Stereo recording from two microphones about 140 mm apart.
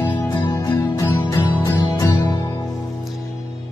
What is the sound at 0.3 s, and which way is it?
Music, 25° left (ahead or behind).